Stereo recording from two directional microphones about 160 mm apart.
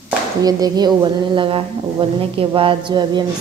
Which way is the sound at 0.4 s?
25° right (ahead or behind).